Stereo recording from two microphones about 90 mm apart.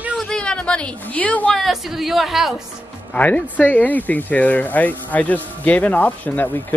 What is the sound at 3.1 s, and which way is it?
Speech, 15° left (ahead or behind).